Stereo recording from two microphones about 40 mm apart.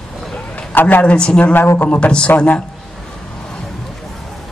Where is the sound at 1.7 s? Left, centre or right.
Left.